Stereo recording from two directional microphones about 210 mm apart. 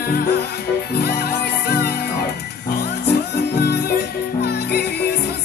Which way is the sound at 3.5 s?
50° left (ahead or behind).